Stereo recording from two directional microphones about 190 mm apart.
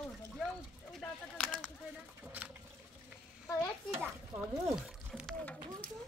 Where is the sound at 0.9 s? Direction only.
Centre (ahead or behind).